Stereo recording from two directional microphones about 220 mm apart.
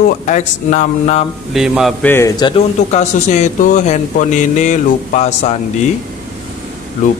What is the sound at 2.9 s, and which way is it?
Speech, 30° left (ahead or behind).